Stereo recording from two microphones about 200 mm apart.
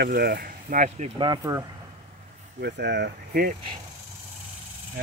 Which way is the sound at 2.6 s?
55° right (ahead or behind).